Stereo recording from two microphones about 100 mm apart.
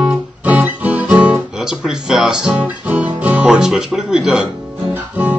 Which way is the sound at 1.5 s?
5° right (ahead or behind).